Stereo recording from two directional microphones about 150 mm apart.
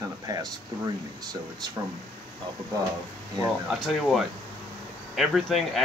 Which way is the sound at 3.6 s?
5° left (ahead or behind).